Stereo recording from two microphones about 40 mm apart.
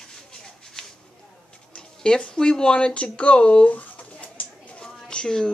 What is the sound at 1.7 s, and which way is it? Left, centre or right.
Speech, centre.